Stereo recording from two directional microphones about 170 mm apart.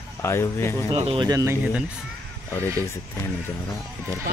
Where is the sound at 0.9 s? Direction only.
30° right (ahead or behind).